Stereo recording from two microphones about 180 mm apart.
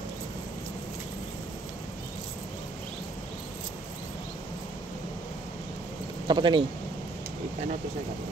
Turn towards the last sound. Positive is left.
turn(degrees=-25)  # may be behind; listen again after turning